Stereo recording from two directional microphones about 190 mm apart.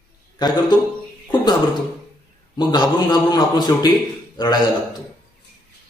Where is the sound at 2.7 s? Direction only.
20° left (ahead or behind).